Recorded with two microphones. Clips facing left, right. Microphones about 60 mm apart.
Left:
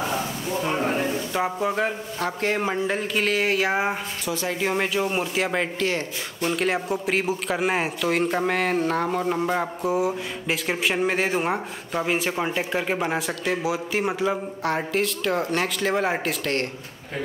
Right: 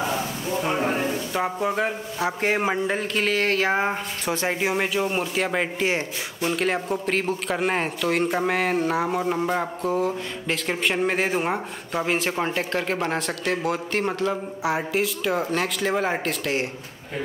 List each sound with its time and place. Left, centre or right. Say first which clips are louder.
0.0 s a sound: even; centre
1.0 s speech: even; centre
2.9 s speech: even; centre
4.3 s speech: right 2 dB; right
4.6 s speech: left 2 dB; centre
5.8 s a man's voice: right 1 dB; centre
6.4 s speech: even; centre
14.6 s speech: right 1 dB; centre